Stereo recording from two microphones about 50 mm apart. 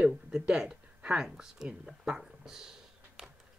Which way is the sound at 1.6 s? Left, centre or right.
Centre.